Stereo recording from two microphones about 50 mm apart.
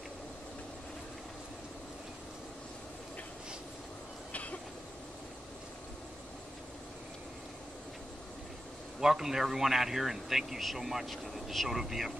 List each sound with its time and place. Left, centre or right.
4.3 s vehicle: left
9.0 s speech: centre